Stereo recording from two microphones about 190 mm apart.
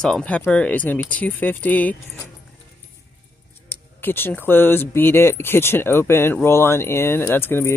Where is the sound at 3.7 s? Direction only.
10° left (ahead or behind).